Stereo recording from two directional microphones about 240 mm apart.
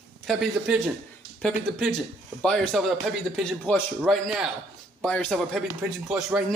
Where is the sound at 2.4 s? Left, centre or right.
Centre.